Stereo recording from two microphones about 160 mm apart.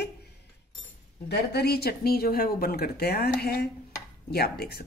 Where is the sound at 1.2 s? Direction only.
85° left.